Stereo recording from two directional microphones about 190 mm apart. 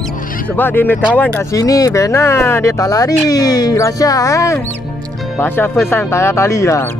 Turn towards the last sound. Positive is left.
turn(degrees=15)  # may be behind; listen again after turning